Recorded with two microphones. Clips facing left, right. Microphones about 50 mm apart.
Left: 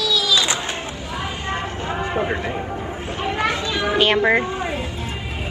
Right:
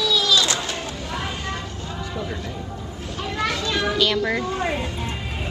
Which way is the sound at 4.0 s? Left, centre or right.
Left.